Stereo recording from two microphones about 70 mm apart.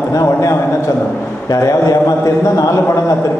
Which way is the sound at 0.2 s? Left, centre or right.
Left.